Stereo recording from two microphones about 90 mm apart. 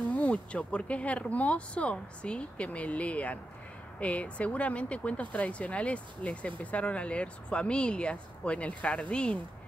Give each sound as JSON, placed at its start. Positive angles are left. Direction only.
{"t": 0.1, "sound": "speech", "side_deg": 15}